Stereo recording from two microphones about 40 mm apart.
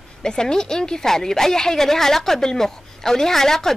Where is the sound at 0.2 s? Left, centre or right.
Centre.